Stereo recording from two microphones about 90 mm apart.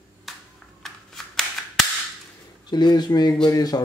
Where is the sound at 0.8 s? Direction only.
5° left (ahead or behind).